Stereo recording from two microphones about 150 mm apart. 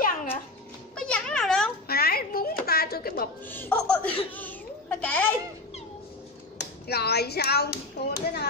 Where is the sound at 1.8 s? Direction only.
90° left.